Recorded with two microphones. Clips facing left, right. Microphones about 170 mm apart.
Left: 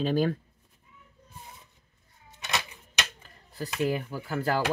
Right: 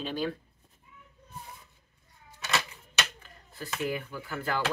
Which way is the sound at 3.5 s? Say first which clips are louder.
Left 4 dB; 35° left (ahead or behind).